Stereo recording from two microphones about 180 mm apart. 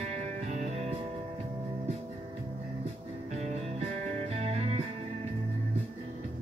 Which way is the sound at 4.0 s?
35° right (ahead or behind).